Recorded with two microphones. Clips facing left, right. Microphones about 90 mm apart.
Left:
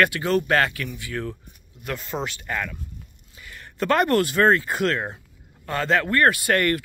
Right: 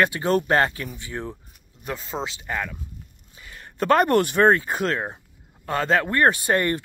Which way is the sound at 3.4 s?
30° right (ahead or behind).